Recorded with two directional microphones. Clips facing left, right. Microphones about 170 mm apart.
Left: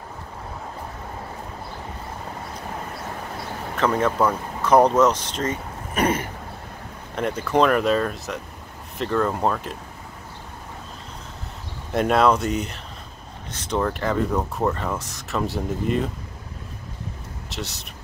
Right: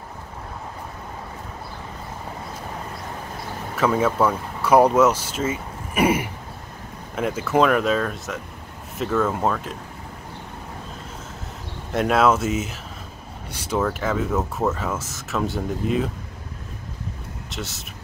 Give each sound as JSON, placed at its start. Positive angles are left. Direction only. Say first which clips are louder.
{"t": 3.7, "sound": "speech", "louder": "right 1 dB", "side_deg": -5}
{"t": 11.9, "sound": "speech", "louder": "even", "side_deg": 0}
{"t": 17.5, "sound": "speech", "louder": "even", "side_deg": 0}